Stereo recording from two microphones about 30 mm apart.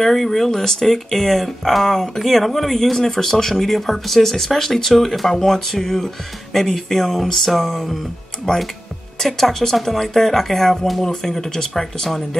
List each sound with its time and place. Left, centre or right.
0.0 s speech: centre
8.5 s speech: centre